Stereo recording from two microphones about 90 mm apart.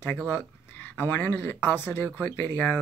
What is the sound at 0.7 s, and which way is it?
Speech, 20° left (ahead or behind).